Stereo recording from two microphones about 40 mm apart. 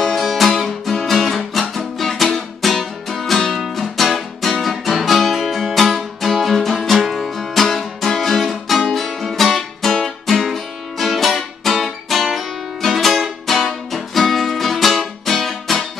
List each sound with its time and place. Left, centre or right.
0.0 s music: centre